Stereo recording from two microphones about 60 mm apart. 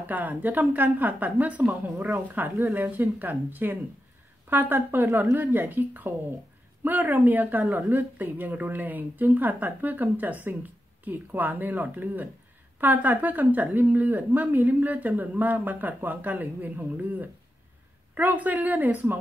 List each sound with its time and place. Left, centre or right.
0.0 s speech: right